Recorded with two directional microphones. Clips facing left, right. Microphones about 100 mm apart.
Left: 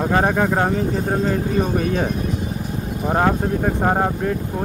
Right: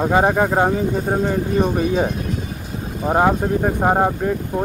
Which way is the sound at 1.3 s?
5° right (ahead or behind).